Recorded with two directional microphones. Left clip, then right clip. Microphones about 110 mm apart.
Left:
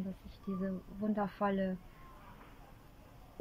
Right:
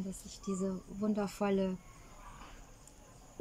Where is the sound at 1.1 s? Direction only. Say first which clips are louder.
Even; 35° right (ahead or behind).